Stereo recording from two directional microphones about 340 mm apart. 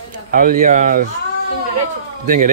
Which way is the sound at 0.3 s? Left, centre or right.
Right.